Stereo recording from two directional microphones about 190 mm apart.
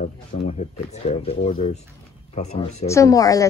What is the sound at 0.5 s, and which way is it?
Speech, 30° left (ahead or behind).